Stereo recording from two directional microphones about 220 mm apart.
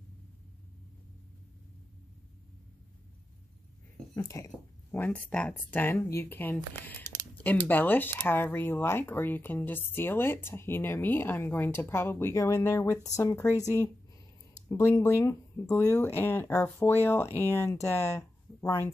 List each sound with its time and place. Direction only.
4.1 s speech: 15° left (ahead or behind)